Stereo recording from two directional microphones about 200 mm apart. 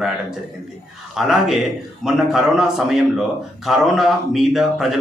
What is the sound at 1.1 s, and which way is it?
A man's voice, centre (ahead or behind).